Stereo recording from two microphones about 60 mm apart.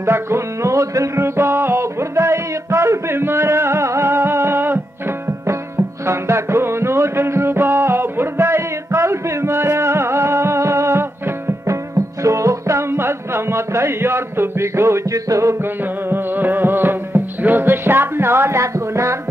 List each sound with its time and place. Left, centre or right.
0.0 s music: right
6.0 s music: right
15.0 s music: right
15.6 s music: right
18.6 s a sound: right